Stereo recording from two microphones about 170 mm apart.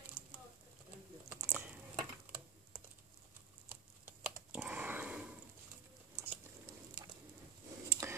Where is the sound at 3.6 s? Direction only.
10° right (ahead or behind).